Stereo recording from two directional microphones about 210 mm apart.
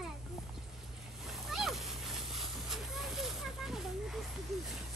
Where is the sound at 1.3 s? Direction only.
Centre (ahead or behind).